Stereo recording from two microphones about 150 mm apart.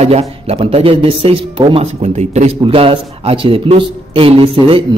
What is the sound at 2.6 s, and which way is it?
A man's voice, 35° right (ahead or behind).